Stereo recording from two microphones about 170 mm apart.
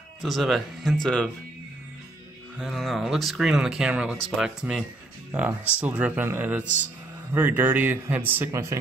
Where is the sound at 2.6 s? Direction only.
Centre (ahead or behind).